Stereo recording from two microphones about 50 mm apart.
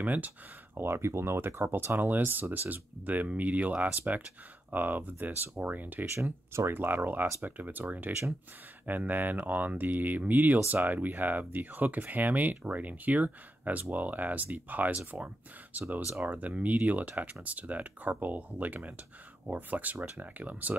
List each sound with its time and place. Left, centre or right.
0.0 s speech: right
0.7 s speech: right
2.0 s speech: right